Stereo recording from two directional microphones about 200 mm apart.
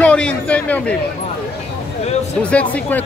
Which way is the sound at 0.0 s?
5° left (ahead or behind).